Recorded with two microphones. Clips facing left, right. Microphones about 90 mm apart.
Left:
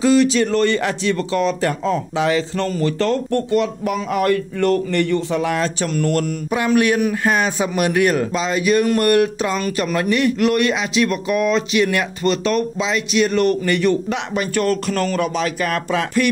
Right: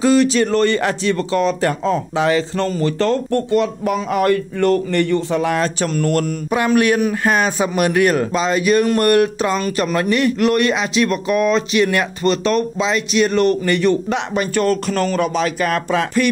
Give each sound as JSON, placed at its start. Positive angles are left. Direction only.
{"t": 0.0, "sound": "a man's voice", "side_deg": -40}